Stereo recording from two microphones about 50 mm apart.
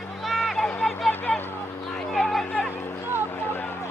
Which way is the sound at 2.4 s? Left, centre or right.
Left.